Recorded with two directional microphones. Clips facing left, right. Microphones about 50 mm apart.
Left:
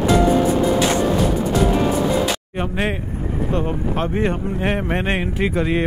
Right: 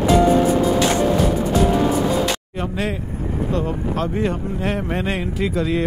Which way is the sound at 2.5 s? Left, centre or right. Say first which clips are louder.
Left 2 dB; left.